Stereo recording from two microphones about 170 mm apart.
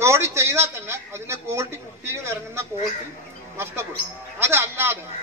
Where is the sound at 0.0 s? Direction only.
15° right (ahead or behind).